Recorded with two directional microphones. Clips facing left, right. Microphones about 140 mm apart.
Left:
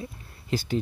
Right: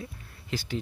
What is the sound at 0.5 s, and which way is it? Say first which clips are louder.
Speech: left 6 dB; 40° left (ahead or behind).